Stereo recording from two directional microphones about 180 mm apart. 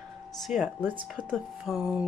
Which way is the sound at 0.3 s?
Centre (ahead or behind).